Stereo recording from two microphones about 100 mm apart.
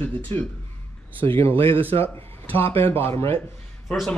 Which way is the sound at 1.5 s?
65° right (ahead or behind).